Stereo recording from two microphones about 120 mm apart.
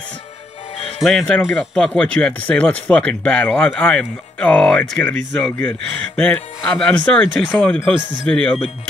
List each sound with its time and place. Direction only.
0.7 s music: 55° left (ahead or behind)
1.0 s speech: 5° left (ahead or behind)